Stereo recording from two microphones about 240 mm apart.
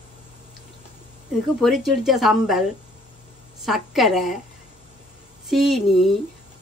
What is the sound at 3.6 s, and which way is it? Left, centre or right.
Speech, centre.